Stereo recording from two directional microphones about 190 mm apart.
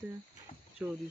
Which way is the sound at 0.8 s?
5° right (ahead or behind).